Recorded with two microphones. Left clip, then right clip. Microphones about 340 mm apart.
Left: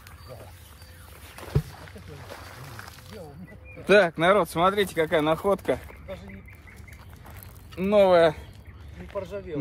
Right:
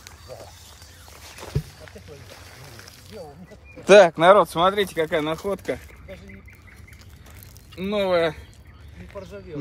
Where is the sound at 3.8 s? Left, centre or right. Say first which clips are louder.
Right 7 dB; centre.